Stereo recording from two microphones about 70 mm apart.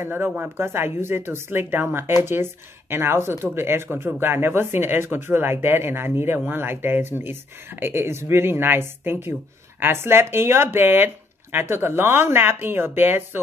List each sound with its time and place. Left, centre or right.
0.0 s speech: right